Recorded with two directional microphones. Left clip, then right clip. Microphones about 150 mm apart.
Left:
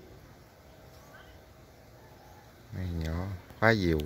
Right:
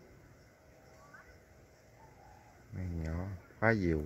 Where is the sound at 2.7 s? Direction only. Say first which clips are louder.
Left 5 dB; centre (ahead or behind).